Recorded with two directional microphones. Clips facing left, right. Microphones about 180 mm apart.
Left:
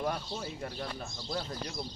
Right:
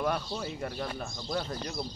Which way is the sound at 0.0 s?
75° right (ahead or behind).